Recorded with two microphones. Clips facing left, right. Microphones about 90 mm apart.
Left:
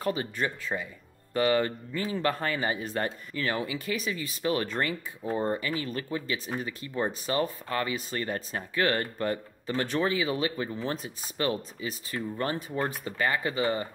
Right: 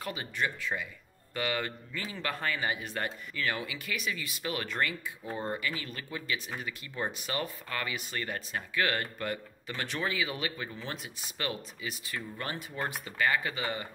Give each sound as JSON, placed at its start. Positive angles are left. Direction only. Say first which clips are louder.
{"t": 0.0, "sound": "speech", "louder": "left 5 dB", "side_deg": 35}